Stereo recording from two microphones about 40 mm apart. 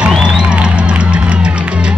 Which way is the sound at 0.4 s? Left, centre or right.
Right.